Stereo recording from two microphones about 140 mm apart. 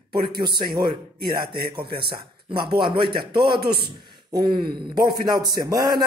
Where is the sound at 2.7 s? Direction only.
35° right (ahead or behind).